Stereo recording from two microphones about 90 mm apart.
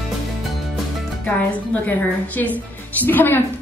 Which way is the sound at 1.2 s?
15° left (ahead or behind).